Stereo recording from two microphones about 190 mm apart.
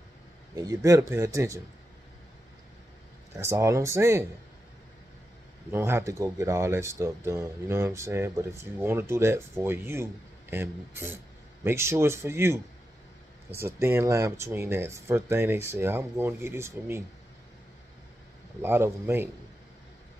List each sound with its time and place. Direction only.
0.6 s speech: 20° right (ahead or behind)
3.3 s speech: 15° right (ahead or behind)
5.7 s speech: 15° right (ahead or behind)
13.6 s speech: 15° right (ahead or behind)
18.6 s speech: 15° right (ahead or behind)